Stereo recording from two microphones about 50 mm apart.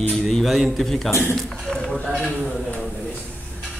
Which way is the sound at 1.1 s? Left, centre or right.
Left.